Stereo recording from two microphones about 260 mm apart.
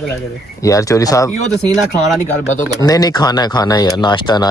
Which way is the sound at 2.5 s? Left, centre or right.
Centre.